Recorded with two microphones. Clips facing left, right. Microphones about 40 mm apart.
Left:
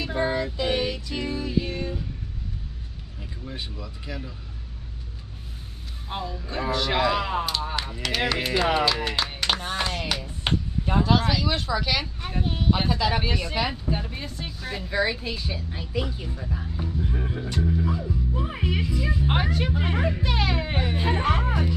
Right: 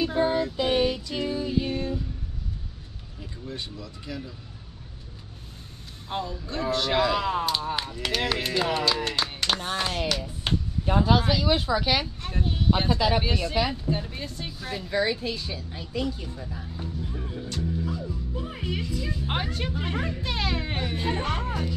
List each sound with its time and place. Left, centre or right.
0.1 s child singing: centre
1.0 s music: centre
3.2 s speech: centre
6.0 s speech: centre
8.0 s speech: centre
8.4 s speech: centre
10.0 s music: centre
10.9 s speech: centre
12.2 s speech: centre
12.8 s speech: centre
17.1 s music: left
17.8 s music: centre
18.7 s speech: centre